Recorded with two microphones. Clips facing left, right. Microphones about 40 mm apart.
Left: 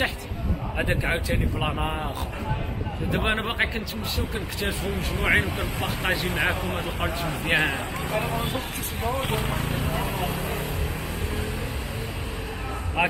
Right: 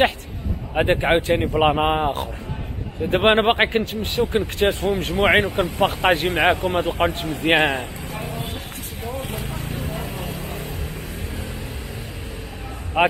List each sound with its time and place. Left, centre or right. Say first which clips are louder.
0.7 s a man's voice: right 9 dB; right
7.0 s speech: right 6 dB; right
9.1 s speech: left 3 dB; left
9.9 s vehicle: left 2 dB; left
13.0 s a man's voice: right 6 dB; right